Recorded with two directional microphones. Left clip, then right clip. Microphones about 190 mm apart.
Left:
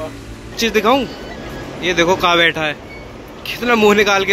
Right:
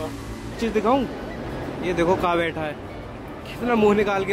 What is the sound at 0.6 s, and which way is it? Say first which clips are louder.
Speech: left 7 dB; centre (ahead or behind).